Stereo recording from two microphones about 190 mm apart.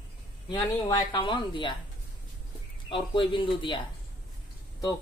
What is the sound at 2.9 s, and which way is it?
Speech, 25° left (ahead or behind).